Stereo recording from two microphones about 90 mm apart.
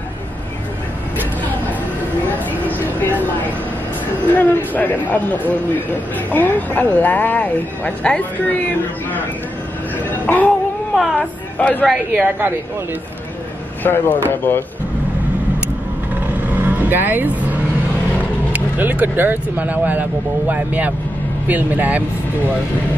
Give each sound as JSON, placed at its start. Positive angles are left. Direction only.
{"t": 2.8, "sound": "speech", "side_deg": 20}
{"t": 4.3, "sound": "speech", "side_deg": 20}
{"t": 10.2, "sound": "a sound", "side_deg": 20}
{"t": 11.1, "sound": "speech", "side_deg": 15}
{"t": 11.9, "sound": "a woman's voice", "side_deg": -15}
{"t": 13.8, "sound": "speech", "side_deg": 20}
{"t": 16.6, "sound": "speech", "side_deg": -20}
{"t": 18.5, "sound": "speech", "side_deg": -15}